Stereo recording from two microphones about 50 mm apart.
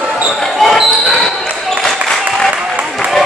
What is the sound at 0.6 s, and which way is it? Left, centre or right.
Basketball bounce, centre.